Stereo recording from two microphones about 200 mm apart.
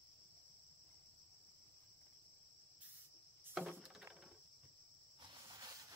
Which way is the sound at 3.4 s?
5° right (ahead or behind).